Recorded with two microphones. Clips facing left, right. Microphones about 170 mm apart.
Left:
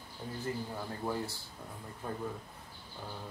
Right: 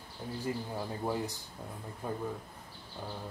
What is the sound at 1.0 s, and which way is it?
Speech, 15° right (ahead or behind).